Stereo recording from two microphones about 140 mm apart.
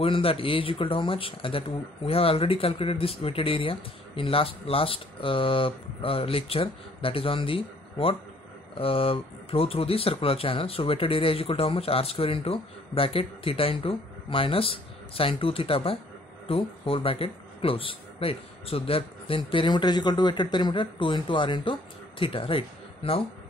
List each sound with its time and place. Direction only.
0.0 s speech: 40° left (ahead or behind)